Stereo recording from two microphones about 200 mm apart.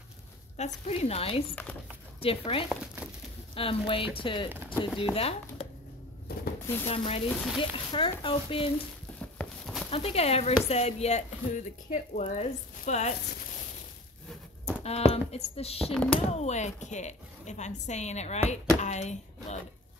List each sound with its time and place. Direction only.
0.6 s speech: 35° left (ahead or behind)
1.5 s speech: 10° left (ahead or behind)
2.1 s speech: 30° left (ahead or behind)
2.7 s crumpling: 5° right (ahead or behind)
3.5 s speech: 25° left (ahead or behind)
6.3 s a sound: 50° left (ahead or behind)
6.9 s speech: 30° left (ahead or behind)
9.4 s a sound: centre (ahead or behind)
9.8 s speech: 30° left (ahead or behind)
14.8 s speech: 30° left (ahead or behind)
15.9 s speech: 5° left (ahead or behind)
16.3 s speech: 35° left (ahead or behind)